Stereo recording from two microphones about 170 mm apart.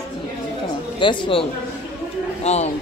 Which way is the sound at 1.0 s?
30° left (ahead or behind).